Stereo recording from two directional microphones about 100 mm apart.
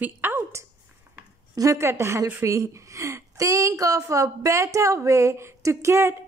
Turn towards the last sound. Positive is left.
turn(degrees=-30)  # may be behind; listen again after turning